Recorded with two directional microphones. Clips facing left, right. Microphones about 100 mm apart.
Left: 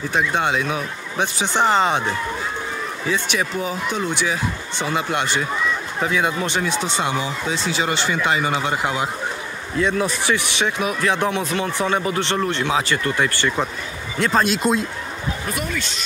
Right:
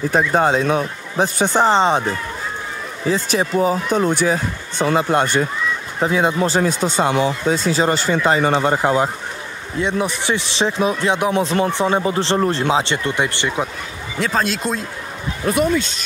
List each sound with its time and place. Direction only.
0.1 s speech: 40° right (ahead or behind)
1.7 s speech: 30° right (ahead or behind)
3.1 s speech: 35° right (ahead or behind)
5.9 s speech: 30° right (ahead or behind)
9.8 s speech: 20° right (ahead or behind)
14.2 s speech: centre (ahead or behind)